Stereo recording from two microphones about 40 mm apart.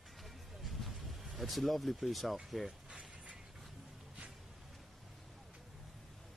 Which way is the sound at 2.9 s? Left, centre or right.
Right.